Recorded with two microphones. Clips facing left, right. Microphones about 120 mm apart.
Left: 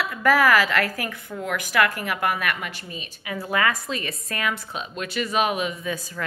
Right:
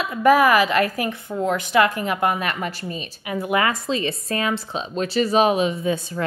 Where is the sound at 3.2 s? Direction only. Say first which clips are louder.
Right 3 dB; 20° right (ahead or behind).